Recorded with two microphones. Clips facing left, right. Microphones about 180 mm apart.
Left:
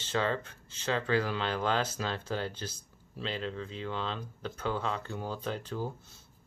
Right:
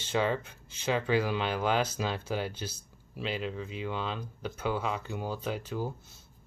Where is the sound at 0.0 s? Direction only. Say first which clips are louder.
Right 2 dB; 15° right (ahead or behind).